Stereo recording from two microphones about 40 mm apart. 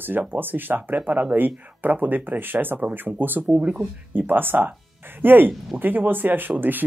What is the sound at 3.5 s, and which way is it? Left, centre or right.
Speech, right.